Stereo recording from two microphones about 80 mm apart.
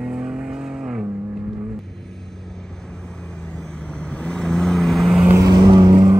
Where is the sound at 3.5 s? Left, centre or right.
Centre.